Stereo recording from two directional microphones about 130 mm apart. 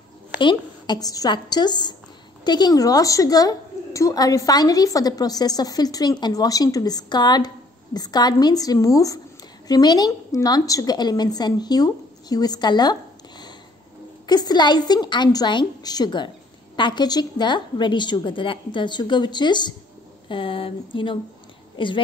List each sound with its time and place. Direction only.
0.4 s a woman's voice: 35° left (ahead or behind)
14.2 s a woman's voice: 35° left (ahead or behind)